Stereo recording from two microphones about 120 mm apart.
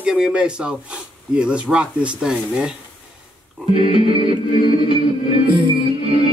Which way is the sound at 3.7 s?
50° right (ahead or behind).